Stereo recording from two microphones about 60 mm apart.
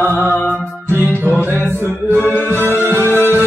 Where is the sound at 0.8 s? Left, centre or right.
Right.